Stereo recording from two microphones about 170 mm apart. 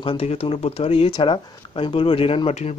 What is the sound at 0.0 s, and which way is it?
Speech, 30° left (ahead or behind).